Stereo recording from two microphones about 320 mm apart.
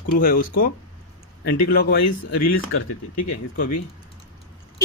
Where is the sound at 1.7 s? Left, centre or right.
Left.